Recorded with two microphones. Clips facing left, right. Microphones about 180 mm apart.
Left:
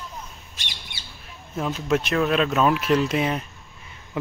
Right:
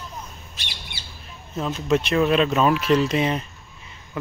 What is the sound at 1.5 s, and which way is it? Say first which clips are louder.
Speech: right 1 dB; 5° left (ahead or behind).